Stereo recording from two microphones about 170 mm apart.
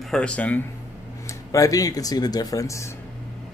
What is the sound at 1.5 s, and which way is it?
Speech, 20° left (ahead or behind).